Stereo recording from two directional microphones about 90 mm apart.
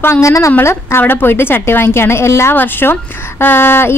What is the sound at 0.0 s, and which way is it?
A woman's voice, 30° left (ahead or behind).